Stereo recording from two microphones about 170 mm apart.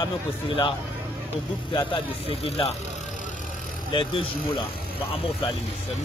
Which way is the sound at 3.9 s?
30° left (ahead or behind).